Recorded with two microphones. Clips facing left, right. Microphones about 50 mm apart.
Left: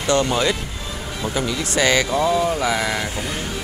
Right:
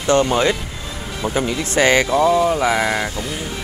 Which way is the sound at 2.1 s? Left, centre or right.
Centre.